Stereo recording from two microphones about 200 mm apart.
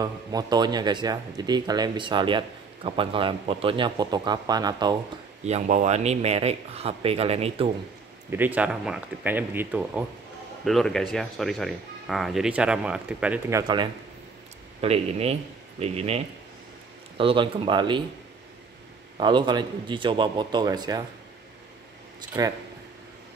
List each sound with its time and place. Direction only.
0.0 s a man's voice: 20° right (ahead or behind)
5.4 s speech: 35° right (ahead or behind)
8.3 s speech: 10° right (ahead or behind)
14.8 s speech: 30° right (ahead or behind)
17.2 s a man's voice: 25° right (ahead or behind)
19.1 s a man's voice: 25° right (ahead or behind)
22.3 s a man's voice: 20° right (ahead or behind)